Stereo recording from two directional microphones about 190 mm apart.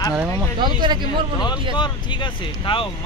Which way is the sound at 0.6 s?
25° right (ahead or behind).